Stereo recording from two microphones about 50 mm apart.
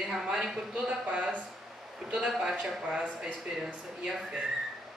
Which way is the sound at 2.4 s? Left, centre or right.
Centre.